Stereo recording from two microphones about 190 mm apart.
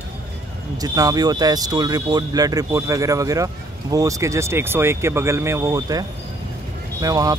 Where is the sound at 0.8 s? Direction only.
20° right (ahead or behind).